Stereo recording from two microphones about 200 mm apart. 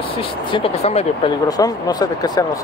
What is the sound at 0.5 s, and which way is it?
Speech, 30° left (ahead or behind).